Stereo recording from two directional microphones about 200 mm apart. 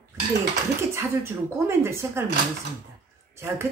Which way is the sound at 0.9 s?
10° right (ahead or behind).